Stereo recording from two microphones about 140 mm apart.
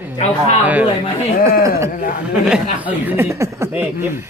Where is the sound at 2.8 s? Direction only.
10° right (ahead or behind).